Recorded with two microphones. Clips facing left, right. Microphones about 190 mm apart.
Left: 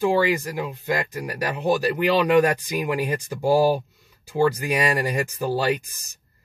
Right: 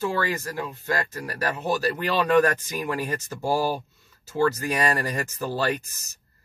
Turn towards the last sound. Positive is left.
turn(degrees=15)  # may be behind; listen again after turning